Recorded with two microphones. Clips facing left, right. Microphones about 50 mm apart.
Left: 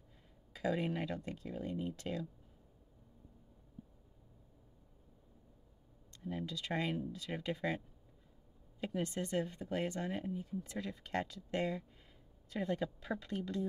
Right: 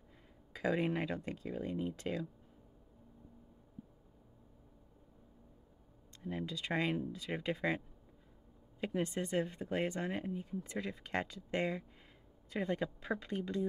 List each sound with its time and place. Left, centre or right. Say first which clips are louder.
0.6 s speech: right 2 dB; centre
6.2 s speech: right 1 dB; centre